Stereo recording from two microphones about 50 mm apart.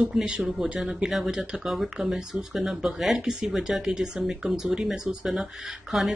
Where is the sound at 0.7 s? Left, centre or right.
Centre.